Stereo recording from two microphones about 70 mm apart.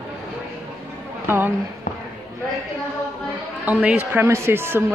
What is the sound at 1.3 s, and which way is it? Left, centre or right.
Speech, right.